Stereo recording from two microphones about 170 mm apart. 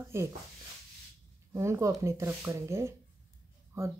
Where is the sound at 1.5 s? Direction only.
15° right (ahead or behind).